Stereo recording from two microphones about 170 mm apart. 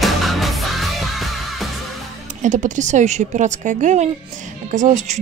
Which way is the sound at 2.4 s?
45° right (ahead or behind).